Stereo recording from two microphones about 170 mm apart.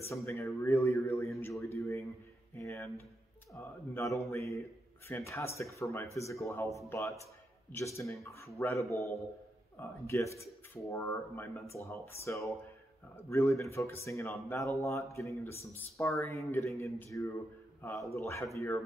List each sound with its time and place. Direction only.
0.1 s speech: 15° left (ahead or behind)
1.4 s a sound: 15° left (ahead or behind)
2.5 s music: 20° left (ahead or behind)
3.5 s speech: 20° left (ahead or behind)